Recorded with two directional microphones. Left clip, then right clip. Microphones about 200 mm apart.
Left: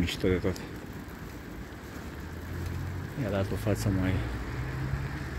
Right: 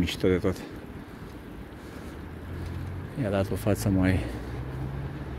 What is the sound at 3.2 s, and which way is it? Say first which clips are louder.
Speech: right 4 dB; 45° right (ahead or behind).